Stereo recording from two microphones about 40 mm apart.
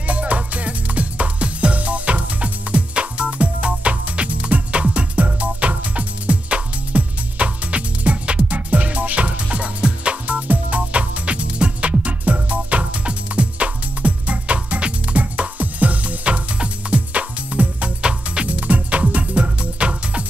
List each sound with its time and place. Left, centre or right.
0.0 s music: right
18.5 s music: right